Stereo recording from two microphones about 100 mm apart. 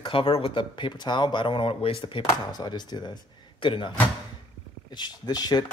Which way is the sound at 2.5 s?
45° left (ahead or behind).